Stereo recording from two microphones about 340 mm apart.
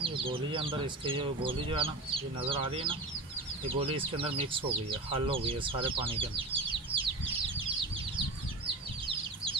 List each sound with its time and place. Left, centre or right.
0.0 s speech: centre